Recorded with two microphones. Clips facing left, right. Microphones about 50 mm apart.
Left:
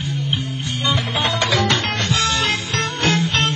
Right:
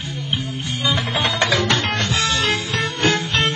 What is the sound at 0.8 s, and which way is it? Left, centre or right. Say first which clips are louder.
Music: even; centre.